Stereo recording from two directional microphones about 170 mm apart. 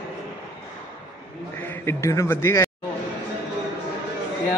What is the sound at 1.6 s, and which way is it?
A man's voice, 15° left (ahead or behind).